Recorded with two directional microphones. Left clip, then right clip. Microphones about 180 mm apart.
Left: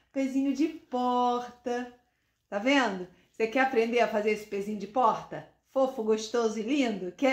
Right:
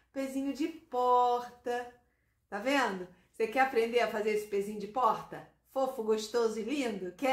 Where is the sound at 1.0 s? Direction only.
50° left (ahead or behind).